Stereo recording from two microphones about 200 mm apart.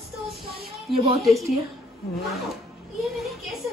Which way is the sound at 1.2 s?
Centre (ahead or behind).